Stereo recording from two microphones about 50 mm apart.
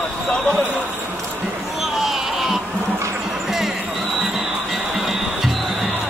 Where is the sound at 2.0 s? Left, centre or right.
Centre.